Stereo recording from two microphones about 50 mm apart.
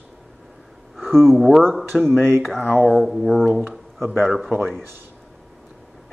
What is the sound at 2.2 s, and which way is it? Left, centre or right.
Speech, right.